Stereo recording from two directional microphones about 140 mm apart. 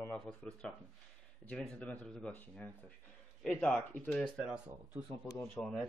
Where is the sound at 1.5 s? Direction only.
10° left (ahead or behind).